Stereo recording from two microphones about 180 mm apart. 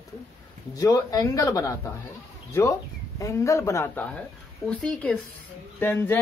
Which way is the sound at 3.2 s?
15° left (ahead or behind).